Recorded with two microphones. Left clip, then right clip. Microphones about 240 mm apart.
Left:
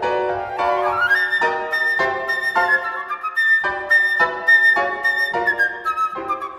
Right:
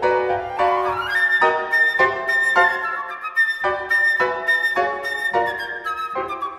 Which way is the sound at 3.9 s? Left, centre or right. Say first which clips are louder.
Left 3 dB; centre.